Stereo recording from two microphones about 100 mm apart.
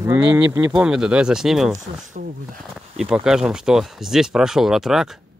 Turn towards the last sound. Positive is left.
turn(degrees=-5)  # may be behind; listen again after turning